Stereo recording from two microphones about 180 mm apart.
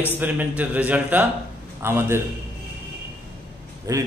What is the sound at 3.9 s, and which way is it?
Speech, 20° right (ahead or behind).